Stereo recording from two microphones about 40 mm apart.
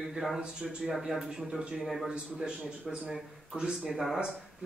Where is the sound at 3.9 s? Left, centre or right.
Centre.